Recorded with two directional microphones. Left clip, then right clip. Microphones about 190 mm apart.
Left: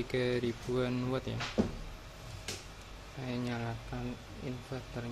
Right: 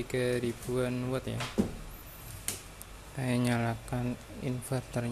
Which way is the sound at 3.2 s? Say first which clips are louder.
Right 7 dB; 40° right (ahead or behind).